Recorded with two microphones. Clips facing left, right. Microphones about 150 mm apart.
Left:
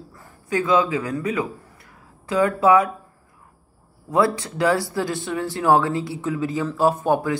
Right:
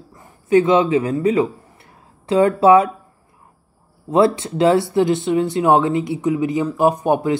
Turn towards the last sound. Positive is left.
turn(degrees=-20)  # may be behind; listen again after turning